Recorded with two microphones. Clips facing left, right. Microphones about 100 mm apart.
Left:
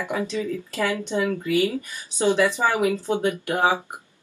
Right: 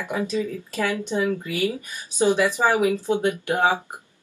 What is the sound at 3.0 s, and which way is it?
Speech, 20° left (ahead or behind).